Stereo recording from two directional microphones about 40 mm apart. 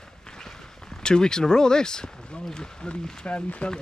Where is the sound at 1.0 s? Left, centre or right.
Centre.